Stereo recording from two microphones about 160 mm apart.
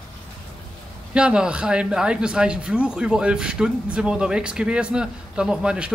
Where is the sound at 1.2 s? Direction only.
5° right (ahead or behind).